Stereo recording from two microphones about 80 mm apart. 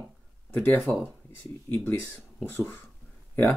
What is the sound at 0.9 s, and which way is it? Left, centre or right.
Speech, centre.